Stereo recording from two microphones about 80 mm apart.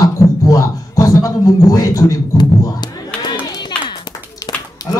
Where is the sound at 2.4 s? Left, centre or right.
Left.